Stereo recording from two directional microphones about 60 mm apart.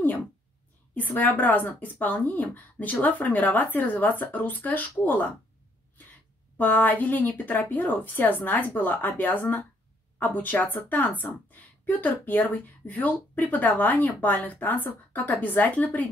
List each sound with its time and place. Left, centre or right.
0.9 s a woman's voice: left
6.6 s a woman's voice: left